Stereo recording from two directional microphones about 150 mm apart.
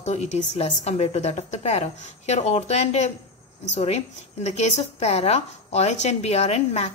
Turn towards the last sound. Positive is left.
turn(degrees=45)  # may be behind; listen again after turning